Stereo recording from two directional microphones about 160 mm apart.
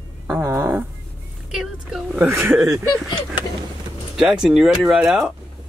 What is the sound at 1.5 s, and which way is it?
Speech, centre (ahead or behind).